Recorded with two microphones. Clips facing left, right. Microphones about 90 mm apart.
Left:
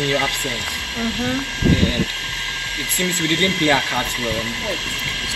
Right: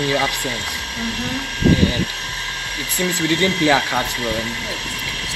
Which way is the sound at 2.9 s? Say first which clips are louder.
Right 2 dB; 20° right (ahead or behind).